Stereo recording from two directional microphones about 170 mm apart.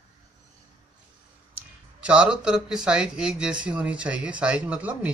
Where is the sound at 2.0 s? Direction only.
5° right (ahead or behind).